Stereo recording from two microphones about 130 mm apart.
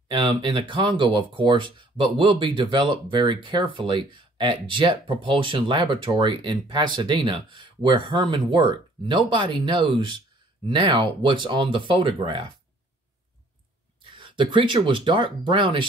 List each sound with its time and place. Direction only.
0.1 s speech: 40° right (ahead or behind)
14.0 s speech: 40° right (ahead or behind)